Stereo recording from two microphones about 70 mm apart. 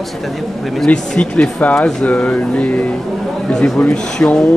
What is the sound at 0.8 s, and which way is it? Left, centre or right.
A man's voice, centre.